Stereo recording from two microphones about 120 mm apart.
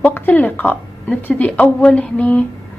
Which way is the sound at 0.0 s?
15° left (ahead or behind).